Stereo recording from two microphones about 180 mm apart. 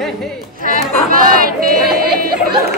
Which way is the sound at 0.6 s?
50° right (ahead or behind).